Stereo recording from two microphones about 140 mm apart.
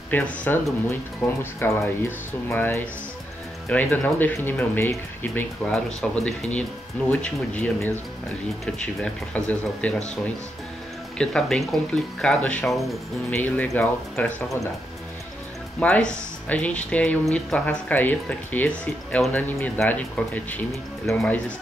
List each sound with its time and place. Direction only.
0.1 s speech: 10° left (ahead or behind)
5.7 s speech: 5° left (ahead or behind)
11.1 s speech: centre (ahead or behind)
12.6 s speech: centre (ahead or behind)
13.3 s speech: 10° left (ahead or behind)
15.8 s speech: 5° left (ahead or behind)